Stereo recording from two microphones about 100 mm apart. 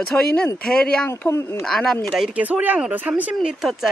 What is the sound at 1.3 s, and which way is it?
Speech, 25° left (ahead or behind).